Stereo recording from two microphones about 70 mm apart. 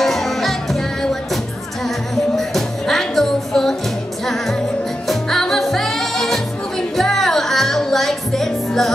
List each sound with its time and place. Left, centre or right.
0.0 s music: centre
5.0 s music: centre